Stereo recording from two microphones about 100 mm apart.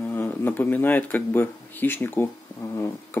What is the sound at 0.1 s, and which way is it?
Speech, 20° left (ahead or behind).